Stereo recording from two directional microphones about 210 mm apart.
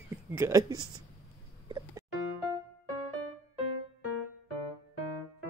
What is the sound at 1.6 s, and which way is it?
Music, 20° right (ahead or behind).